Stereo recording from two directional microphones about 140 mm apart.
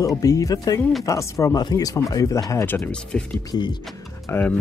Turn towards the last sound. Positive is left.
turn(degrees=15)  # may be behind; listen again after turning